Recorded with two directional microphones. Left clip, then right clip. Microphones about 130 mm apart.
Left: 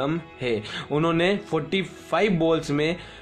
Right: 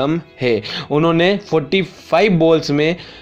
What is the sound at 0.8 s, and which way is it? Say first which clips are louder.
Speech: right 8 dB; 25° right (ahead or behind).